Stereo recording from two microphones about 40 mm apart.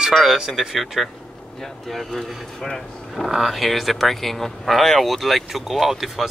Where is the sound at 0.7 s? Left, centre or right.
Centre.